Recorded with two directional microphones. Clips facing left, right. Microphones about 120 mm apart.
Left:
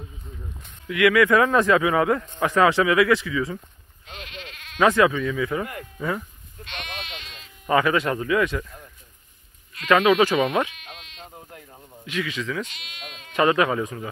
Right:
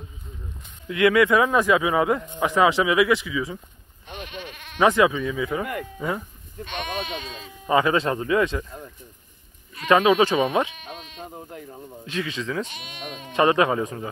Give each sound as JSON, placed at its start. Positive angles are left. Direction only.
{"t": 0.8, "sound": "a man's voice", "side_deg": -30}
{"t": 4.7, "sound": "speech", "side_deg": -20}
{"t": 7.6, "sound": "speech", "side_deg": -25}
{"t": 9.8, "sound": "speech", "side_deg": -25}